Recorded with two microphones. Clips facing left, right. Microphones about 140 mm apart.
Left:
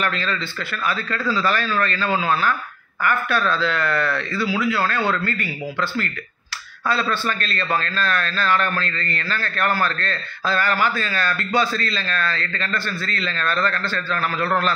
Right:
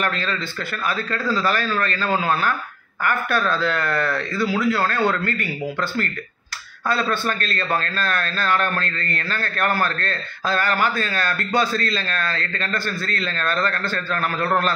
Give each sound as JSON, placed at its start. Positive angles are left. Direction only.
{"t": 0.0, "sound": "a man's voice", "side_deg": -45}